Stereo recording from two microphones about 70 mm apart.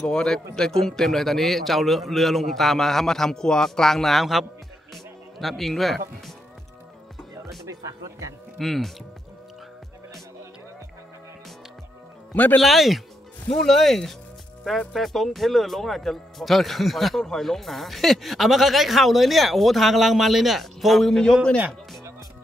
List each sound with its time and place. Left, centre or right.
0.0 s speech: centre
7.6 s speech: right
8.5 s speech: centre
12.5 s speech: centre